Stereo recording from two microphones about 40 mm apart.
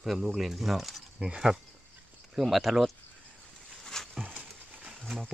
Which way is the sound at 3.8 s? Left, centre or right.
Centre.